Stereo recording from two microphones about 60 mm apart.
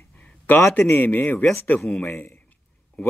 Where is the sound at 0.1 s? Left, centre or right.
Left.